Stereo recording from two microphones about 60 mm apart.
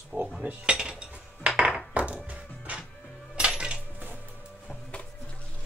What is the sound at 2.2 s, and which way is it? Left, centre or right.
Music, right.